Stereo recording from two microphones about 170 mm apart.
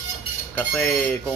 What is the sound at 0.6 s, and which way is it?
Speech, 5° left (ahead or behind).